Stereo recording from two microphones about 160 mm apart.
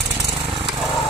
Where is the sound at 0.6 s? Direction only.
Centre (ahead or behind).